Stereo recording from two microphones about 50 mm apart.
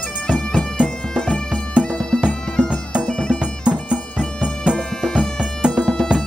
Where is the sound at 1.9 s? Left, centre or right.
Centre.